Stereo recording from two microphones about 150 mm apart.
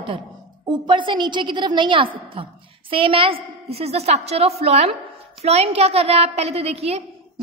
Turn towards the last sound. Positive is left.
turn(degrees=-45)  # may be behind; listen again after turning